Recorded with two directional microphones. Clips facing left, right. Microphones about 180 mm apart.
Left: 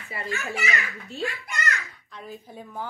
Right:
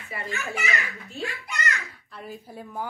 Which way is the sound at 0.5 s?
Centre (ahead or behind).